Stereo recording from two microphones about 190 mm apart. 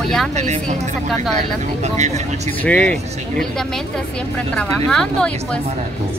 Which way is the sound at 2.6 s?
5° left (ahead or behind).